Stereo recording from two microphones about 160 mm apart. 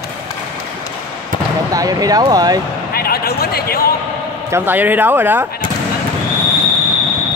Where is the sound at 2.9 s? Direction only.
70° left (ahead or behind).